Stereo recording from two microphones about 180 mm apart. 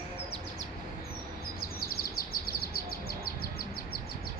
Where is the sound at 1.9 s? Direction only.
55° left (ahead or behind).